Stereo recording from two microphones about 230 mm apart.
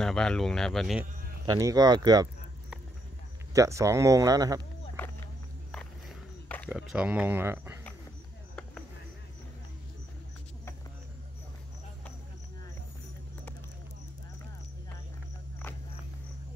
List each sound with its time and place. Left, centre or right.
0.0 s speech: centre
1.4 s speech: centre
3.5 s speech: centre
5.7 s a sound: centre